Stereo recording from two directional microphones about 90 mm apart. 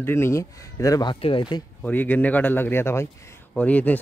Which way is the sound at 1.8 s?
20° left (ahead or behind).